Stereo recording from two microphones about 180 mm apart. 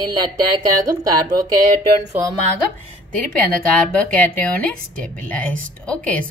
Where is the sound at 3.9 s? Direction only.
10° left (ahead or behind).